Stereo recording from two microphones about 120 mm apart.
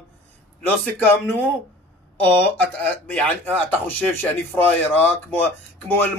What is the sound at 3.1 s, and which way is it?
Speech, 15° left (ahead or behind).